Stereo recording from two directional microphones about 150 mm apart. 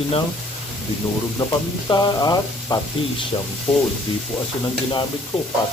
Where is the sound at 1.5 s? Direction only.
25° left (ahead or behind).